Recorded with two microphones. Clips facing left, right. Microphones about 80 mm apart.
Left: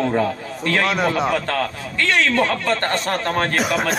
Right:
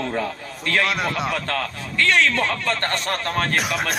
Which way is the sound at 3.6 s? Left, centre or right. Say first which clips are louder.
Left 4 dB; centre.